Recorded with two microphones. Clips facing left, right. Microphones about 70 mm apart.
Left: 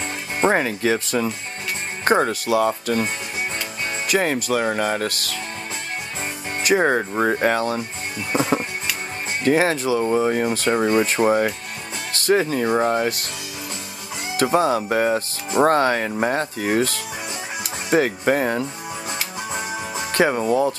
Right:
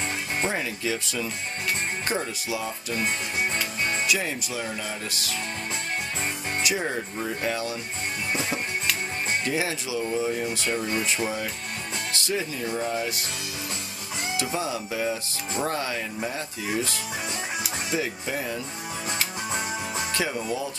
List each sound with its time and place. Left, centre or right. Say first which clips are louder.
0.5 s speech: left 14 dB; left
4.1 s speech: left 8 dB; left
6.6 s speech: left 10 dB; left
6.9 s speech: left 10 dB; left
8.3 s music: left 9 dB; left
9.4 s speech: left 9 dB; left
14.3 s speech: left 11 dB; left
19.0 s music: even; centre
20.1 s speech: left 12 dB; left